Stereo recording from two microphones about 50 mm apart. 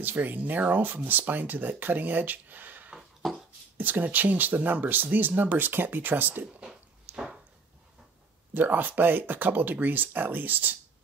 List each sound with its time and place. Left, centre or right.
0.0 s speech: right
3.2 s beatboxing: centre
3.7 s speech: right
7.1 s a sound: right
8.5 s speech: right